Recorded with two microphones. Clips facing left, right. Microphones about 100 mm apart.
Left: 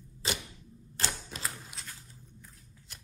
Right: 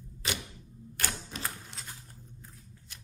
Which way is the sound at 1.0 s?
30° left (ahead or behind).